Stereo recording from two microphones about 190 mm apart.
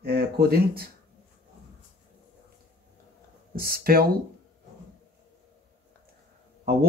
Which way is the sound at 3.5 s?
50° right (ahead or behind).